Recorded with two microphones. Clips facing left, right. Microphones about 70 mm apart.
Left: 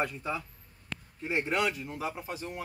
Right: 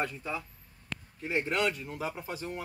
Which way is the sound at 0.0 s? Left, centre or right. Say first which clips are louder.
Left 2 dB; centre.